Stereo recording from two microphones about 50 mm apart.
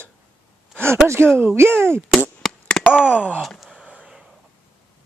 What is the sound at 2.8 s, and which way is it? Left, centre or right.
Wail, centre.